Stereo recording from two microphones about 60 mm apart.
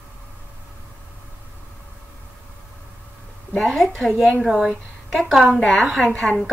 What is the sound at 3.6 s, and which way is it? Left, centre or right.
A woman's voice, centre.